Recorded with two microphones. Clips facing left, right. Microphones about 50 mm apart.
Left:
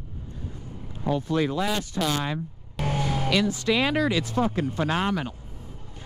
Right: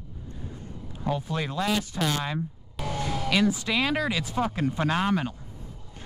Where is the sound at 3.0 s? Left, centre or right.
Left.